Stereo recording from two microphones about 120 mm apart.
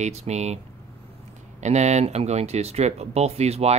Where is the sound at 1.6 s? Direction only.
70° right (ahead or behind).